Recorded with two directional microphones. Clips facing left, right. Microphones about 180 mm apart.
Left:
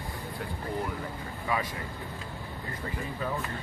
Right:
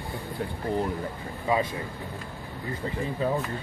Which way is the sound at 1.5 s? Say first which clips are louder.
Right 6 dB; 25° right (ahead or behind).